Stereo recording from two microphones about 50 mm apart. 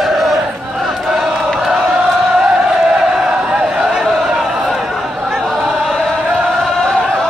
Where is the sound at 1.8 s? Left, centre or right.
Right; by 3.4 s centre.